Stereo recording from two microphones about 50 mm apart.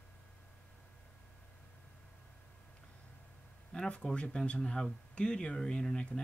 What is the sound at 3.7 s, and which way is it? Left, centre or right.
Speech, centre.